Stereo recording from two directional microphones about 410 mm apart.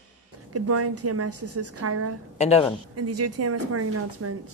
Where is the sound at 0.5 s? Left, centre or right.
Right.